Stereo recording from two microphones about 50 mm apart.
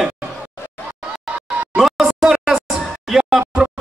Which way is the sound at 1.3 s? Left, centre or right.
Centre.